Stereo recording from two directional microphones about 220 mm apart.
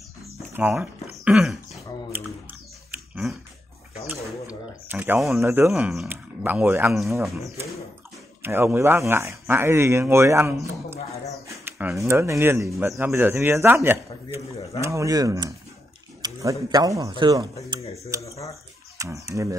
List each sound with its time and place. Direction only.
0.5 s throat clearing: 10° right (ahead or behind)
2.9 s dog: 5° right (ahead or behind)
4.1 s a sound: 5° right (ahead or behind)
5.7 s speech: centre (ahead or behind); by 17.5 s 20° right (ahead or behind)
18.2 s a sound: 15° left (ahead or behind)
18.9 s speech: 15° right (ahead or behind)